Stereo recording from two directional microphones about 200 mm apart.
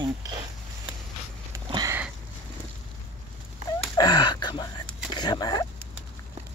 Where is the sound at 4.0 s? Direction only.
20° left (ahead or behind).